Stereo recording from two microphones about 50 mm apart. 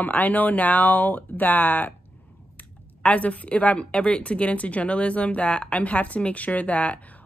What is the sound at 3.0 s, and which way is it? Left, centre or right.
A woman's voice, left.